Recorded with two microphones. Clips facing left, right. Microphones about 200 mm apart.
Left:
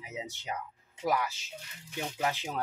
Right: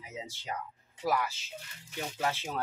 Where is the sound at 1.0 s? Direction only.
20° left (ahead or behind).